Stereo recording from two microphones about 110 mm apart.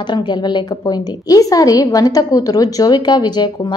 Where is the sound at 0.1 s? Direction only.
40° left (ahead or behind).